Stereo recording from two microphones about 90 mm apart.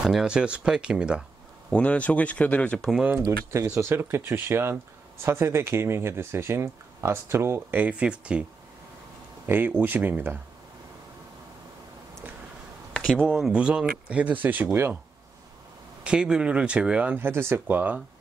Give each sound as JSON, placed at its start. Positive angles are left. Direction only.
{"t": 0.0, "sound": "speech", "side_deg": -5}
{"t": 1.7, "sound": "speech", "side_deg": 15}
{"t": 3.2, "sound": "speech", "side_deg": -35}
{"t": 9.5, "sound": "speech", "side_deg": -20}
{"t": 12.9, "sound": "a sound", "side_deg": 5}
{"t": 13.4, "sound": "speech", "side_deg": -10}
{"t": 16.0, "sound": "speech", "side_deg": -10}